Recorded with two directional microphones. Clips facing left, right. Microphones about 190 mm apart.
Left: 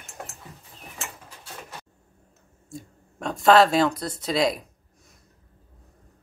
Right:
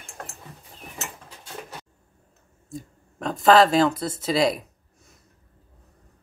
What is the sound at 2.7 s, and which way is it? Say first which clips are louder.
Speech: right 3 dB; centre (ahead or behind).